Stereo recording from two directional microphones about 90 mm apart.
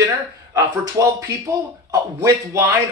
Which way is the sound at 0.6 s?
40° right (ahead or behind).